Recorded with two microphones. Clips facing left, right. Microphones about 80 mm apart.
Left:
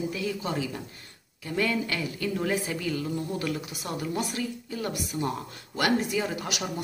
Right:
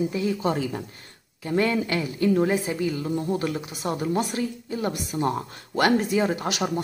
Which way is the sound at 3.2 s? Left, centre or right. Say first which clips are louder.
Right 4 dB; right.